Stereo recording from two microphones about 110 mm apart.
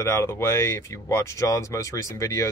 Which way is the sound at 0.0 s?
25° left (ahead or behind).